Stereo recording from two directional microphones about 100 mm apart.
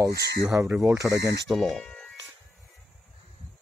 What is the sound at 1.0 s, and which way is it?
Speech, 5° right (ahead or behind).